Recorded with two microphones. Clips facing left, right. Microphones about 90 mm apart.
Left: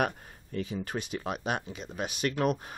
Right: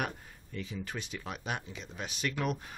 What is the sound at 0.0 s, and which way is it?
Speech, 55° left (ahead or behind).